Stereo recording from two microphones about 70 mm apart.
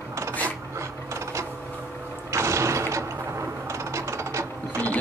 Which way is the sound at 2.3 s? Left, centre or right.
Right.